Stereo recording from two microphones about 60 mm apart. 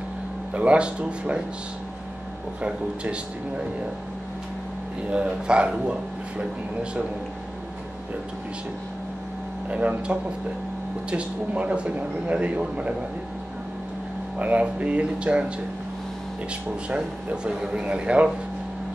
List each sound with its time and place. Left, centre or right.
0.6 s speech: right
2.6 s a man's voice: centre
5.1 s a man's voice: centre
9.7 s speech: right
14.4 s speech: right
16.9 s a man's voice: centre